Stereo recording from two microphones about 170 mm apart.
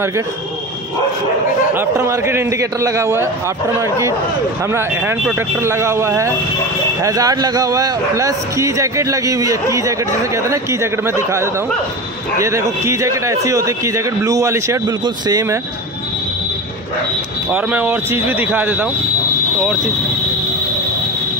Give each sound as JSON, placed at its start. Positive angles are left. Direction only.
{"t": 1.8, "sound": "a man's voice", "side_deg": -15}
{"t": 4.6, "sound": "a man's voice", "side_deg": -15}
{"t": 17.5, "sound": "a man's voice", "side_deg": -10}